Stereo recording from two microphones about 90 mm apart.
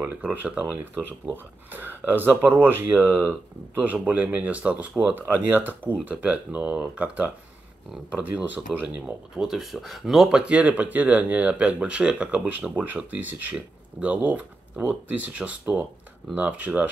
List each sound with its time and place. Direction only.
0.0 s speech: 20° right (ahead or behind)